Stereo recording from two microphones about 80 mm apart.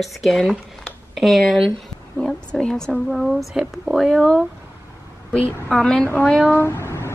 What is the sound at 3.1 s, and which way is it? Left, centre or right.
Speech, centre.